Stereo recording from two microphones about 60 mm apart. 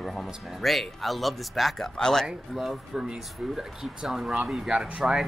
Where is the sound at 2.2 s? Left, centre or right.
Centre.